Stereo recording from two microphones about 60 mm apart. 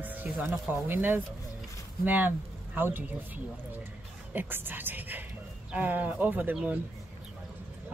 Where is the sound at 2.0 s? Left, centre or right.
Right.